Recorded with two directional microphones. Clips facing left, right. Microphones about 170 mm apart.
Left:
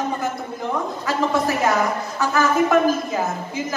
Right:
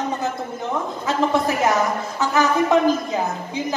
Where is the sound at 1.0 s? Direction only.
20° right (ahead or behind).